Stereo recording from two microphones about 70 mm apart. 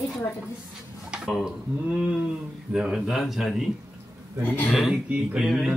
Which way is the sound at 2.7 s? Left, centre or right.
Centre.